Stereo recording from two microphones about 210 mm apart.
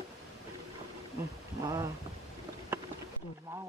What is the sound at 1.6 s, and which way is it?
Speech, 15° right (ahead or behind).